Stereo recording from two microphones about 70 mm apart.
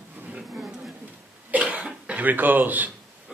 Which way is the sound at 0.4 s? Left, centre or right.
Centre.